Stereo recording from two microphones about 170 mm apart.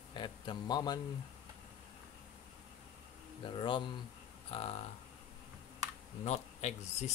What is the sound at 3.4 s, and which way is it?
Speech, 30° left (ahead or behind).